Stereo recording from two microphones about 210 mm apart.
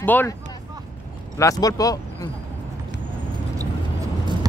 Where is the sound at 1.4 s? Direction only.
15° left (ahead or behind).